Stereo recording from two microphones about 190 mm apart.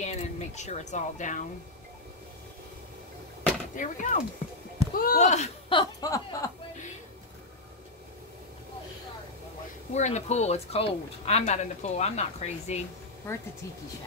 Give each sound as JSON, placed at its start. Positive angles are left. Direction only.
{"t": 0.0, "sound": "speech", "side_deg": 35}
{"t": 3.7, "sound": "speech", "side_deg": 40}
{"t": 9.9, "sound": "speech", "side_deg": 35}
{"t": 13.3, "sound": "speech", "side_deg": 10}